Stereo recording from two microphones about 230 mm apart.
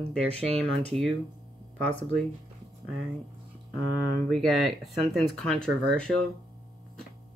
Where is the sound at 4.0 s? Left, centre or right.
Centre.